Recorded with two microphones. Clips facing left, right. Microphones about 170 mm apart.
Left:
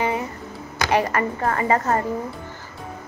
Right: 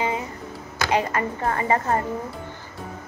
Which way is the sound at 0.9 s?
20° right (ahead or behind).